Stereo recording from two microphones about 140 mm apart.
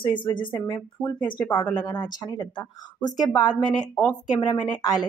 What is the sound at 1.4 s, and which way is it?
Speech, 10° left (ahead or behind).